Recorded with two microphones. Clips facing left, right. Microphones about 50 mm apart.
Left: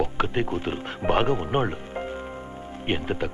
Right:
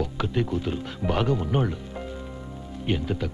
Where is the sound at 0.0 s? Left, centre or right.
Left.